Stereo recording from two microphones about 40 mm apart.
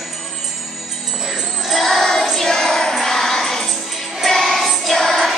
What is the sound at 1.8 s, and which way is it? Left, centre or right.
Music, centre.